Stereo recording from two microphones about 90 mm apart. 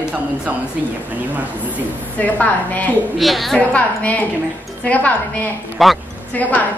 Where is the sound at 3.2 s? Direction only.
Centre (ahead or behind).